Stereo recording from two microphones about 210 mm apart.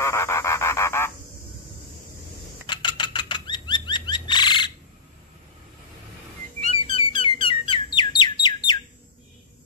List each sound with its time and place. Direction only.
0.0 s a sound: 15° left (ahead or behind)
2.6 s bird flight: 20° left (ahead or behind)
6.7 s bird: 25° left (ahead or behind)